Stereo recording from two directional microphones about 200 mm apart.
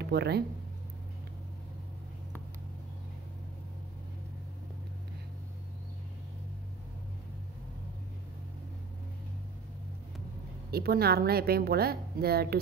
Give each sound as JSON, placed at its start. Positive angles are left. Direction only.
{"t": 0.0, "sound": "speech", "side_deg": -55}
{"t": 10.7, "sound": "a woman's voice", "side_deg": -50}